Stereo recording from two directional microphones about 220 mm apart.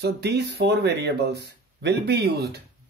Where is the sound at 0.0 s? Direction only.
50° right (ahead or behind).